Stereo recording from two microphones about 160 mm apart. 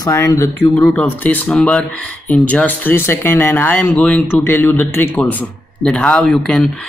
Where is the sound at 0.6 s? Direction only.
5° left (ahead or behind).